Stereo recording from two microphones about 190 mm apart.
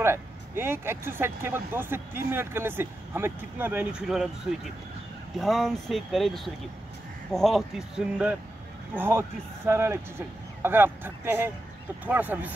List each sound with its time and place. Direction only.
0.0 s speech: 10° right (ahead or behind)